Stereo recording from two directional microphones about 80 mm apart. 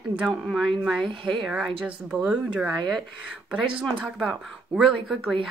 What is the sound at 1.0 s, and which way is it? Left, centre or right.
Speech, right.